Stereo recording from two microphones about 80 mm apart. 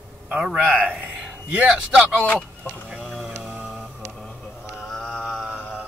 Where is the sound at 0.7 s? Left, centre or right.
Centre.